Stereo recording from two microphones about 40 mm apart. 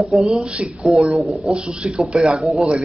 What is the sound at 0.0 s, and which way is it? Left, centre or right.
Speech, centre.